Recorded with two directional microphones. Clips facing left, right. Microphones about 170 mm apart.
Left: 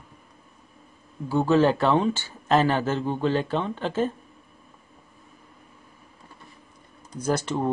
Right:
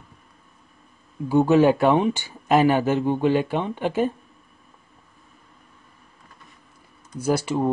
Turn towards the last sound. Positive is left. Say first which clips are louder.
# right 3 dB
turn(degrees=-10)  # may be behind; listen again after turning